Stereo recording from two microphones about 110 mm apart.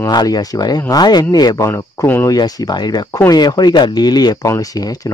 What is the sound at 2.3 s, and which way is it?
Speech, 35° left (ahead or behind).